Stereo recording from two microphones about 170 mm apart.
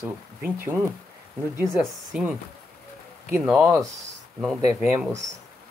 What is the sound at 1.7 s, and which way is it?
Speech, centre (ahead or behind).